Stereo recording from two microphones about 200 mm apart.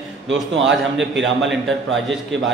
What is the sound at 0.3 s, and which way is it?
A man's voice, 65° right (ahead or behind).